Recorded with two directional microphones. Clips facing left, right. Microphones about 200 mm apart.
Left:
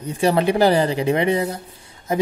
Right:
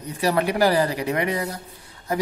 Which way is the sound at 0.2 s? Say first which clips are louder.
Left 4 dB; 25° left (ahead or behind).